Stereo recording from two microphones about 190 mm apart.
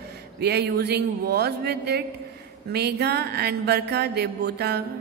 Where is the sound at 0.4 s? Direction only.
60° right (ahead or behind).